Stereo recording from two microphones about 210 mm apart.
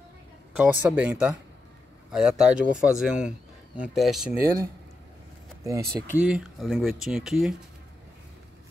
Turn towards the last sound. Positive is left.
turn(degrees=0)  # may be behind; listen again after turning